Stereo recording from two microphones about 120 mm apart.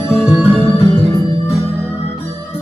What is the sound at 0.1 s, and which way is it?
Music, 25° left (ahead or behind).